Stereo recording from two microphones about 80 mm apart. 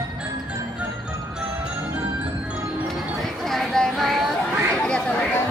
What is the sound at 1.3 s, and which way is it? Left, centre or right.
Music, centre.